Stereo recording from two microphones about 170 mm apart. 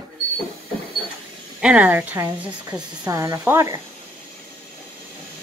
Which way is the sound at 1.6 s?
10° right (ahead or behind).